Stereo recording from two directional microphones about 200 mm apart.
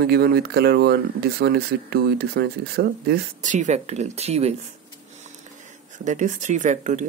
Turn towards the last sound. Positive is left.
turn(degrees=-35)  # may be behind; listen again after turning